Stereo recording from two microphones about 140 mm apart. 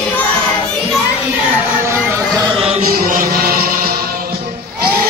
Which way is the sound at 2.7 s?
80° right.